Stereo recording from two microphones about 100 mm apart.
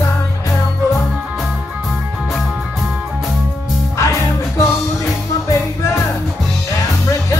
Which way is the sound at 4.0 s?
30° left (ahead or behind).